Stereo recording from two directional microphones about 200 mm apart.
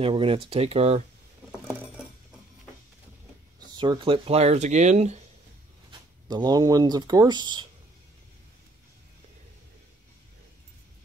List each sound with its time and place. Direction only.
0.0 s speech: 25° right (ahead or behind)
3.7 s speech: 20° right (ahead or behind)
5.9 s speech: 20° right (ahead or behind)